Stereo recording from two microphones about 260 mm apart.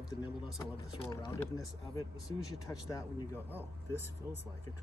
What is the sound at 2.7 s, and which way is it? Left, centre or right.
Speech, centre.